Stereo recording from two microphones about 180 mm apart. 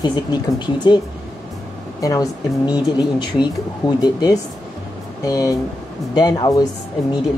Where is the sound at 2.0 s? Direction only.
20° left (ahead or behind).